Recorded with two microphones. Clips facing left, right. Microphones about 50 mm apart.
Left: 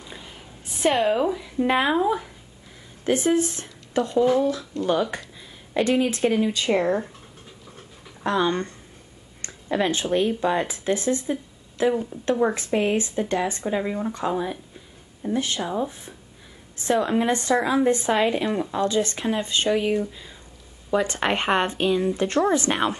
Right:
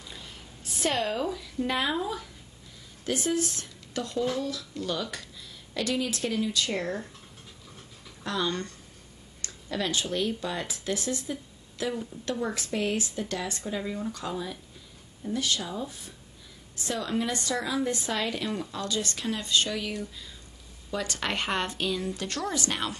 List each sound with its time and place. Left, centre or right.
0.0 s a sound: left
3.1 s speech: left
8.2 s speech: left